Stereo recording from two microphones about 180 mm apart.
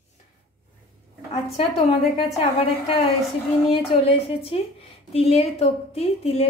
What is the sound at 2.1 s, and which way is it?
Speech, 35° left (ahead or behind).